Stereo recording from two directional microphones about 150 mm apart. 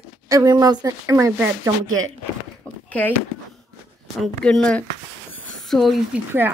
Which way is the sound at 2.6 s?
10° left (ahead or behind).